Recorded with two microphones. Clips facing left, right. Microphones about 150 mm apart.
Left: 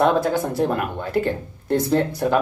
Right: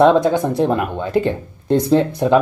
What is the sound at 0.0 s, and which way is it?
Speech, 20° right (ahead or behind).